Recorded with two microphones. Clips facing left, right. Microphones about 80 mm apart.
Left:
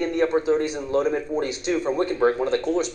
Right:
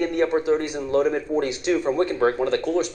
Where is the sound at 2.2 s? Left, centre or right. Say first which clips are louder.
Left 1 dB; centre.